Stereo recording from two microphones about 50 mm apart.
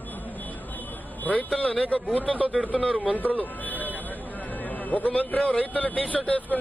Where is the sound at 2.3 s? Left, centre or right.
Right.